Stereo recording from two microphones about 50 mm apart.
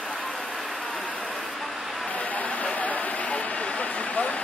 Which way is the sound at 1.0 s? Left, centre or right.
Left.